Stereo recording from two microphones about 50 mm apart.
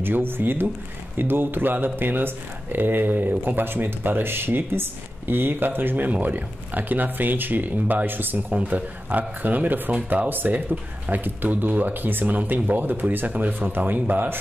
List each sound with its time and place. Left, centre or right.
0.0 s speech: right
8.5 s speech: right